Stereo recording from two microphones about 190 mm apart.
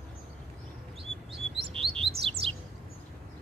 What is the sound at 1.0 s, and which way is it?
Chirp, 30° right (ahead or behind).